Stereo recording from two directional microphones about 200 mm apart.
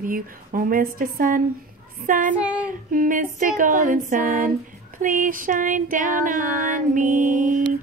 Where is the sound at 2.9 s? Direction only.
40° right (ahead or behind).